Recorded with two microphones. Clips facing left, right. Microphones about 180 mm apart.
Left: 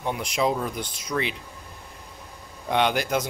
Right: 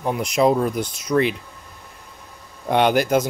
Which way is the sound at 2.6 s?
45° right (ahead or behind).